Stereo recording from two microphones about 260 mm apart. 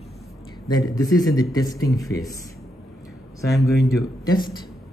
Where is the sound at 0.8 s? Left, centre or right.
Centre.